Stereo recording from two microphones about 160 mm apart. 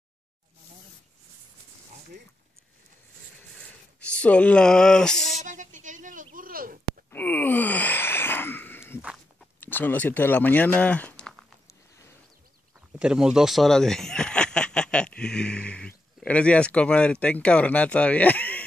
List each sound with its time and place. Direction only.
3.3 s a sound: 10° left (ahead or behind)
5.4 s a sound: 50° right (ahead or behind)
7.1 s wail: 10° left (ahead or behind)
9.0 s walk: 5° right (ahead or behind)
9.6 s speech: 10° left (ahead or behind)
13.0 s speech: 5° right (ahead or behind)